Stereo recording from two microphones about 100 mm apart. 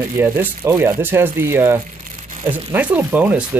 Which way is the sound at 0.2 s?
20° right (ahead or behind).